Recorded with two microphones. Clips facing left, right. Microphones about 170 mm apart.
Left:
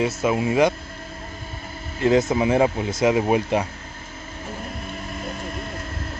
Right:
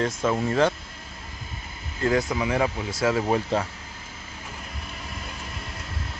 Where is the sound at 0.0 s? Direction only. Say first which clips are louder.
Left 3 dB; 10° left (ahead or behind).